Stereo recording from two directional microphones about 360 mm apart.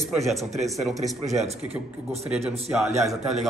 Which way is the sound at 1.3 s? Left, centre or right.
Centre.